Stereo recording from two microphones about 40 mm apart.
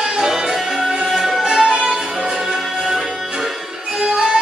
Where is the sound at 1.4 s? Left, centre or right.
Right.